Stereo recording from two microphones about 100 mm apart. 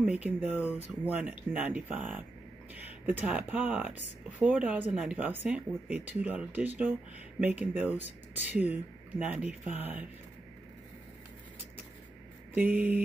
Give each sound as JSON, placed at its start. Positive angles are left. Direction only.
{"t": 0.0, "sound": "speech", "side_deg": -15}
{"t": 12.5, "sound": "speech", "side_deg": -15}